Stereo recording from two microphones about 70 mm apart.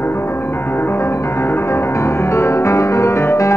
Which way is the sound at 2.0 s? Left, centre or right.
Left.